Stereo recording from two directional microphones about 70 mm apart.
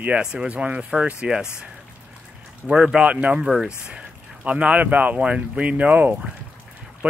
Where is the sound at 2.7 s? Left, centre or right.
Centre.